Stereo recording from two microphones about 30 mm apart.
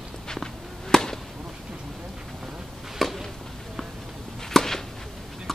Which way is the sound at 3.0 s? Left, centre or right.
Centre.